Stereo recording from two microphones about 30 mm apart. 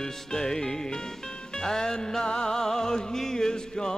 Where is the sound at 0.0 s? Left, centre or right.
Centre.